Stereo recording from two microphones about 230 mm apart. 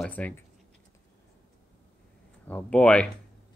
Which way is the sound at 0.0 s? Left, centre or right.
Centre.